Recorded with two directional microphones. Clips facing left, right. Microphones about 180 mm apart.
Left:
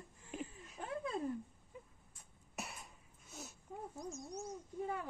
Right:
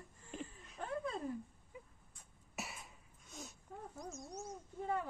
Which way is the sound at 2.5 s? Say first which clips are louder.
Even; centre (ahead or behind).